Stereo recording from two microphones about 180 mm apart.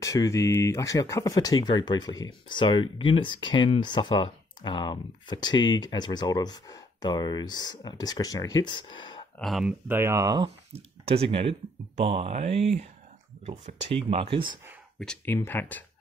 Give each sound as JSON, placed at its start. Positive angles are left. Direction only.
{"t": 0.0, "sound": "speech", "side_deg": 20}
{"t": 9.4, "sound": "speech", "side_deg": 0}
{"t": 15.0, "sound": "speech", "side_deg": 5}